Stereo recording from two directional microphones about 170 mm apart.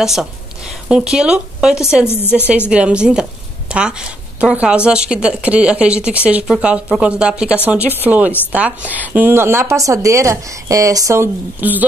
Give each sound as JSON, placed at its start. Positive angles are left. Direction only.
{"t": 0.0, "sound": "a woman's voice", "side_deg": 0}
{"t": 2.0, "sound": "a woman's voice", "side_deg": 15}
{"t": 2.3, "sound": "a woman's voice", "side_deg": -5}